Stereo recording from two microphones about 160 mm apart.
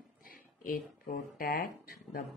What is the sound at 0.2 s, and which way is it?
Speech, 65° left (ahead or behind).